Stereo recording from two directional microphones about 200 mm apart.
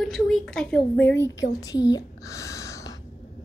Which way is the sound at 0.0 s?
Centre (ahead or behind).